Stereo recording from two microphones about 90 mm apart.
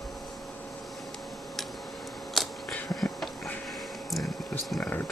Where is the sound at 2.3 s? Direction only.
5° left (ahead or behind).